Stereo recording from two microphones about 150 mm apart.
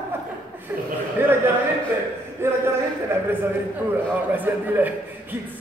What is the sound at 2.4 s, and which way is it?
A man's voice, 15° right (ahead or behind).